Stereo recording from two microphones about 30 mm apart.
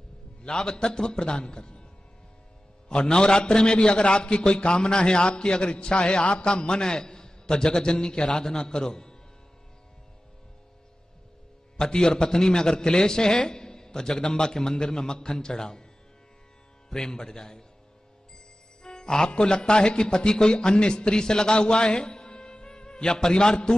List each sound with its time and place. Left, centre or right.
0.4 s a man's voice: left
2.9 s a man's voice: left
11.7 s a man's voice: left
16.9 s a man's voice: centre
18.8 s speech: left